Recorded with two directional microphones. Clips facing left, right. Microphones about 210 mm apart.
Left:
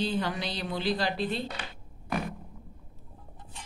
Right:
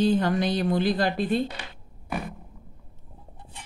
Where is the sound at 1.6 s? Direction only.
5° right (ahead or behind).